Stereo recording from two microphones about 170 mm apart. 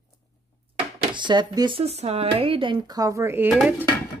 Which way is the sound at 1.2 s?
25° right (ahead or behind).